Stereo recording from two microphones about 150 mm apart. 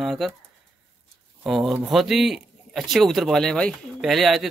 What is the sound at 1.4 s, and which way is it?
A man's voice, centre (ahead or behind).